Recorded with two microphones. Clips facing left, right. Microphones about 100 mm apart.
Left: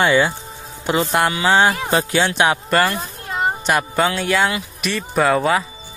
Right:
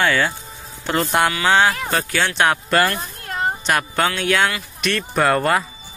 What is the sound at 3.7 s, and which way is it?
Speech, 5° left (ahead or behind).